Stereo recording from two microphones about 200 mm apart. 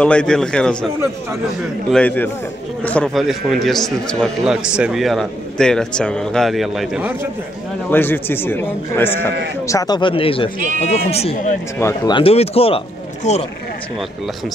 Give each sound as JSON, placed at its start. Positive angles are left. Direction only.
{"t": 0.0, "sound": "a man's voice", "side_deg": 5}
{"t": 1.9, "sound": "a man's voice", "side_deg": 5}
{"t": 7.9, "sound": "a man's voice", "side_deg": 10}
{"t": 11.8, "sound": "a man's voice", "side_deg": 15}
{"t": 12.2, "sound": "speech", "side_deg": 30}